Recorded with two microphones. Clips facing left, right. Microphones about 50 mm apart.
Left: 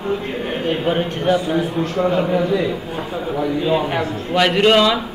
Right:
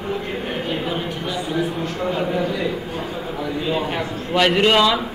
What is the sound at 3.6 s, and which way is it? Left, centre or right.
Speech, centre.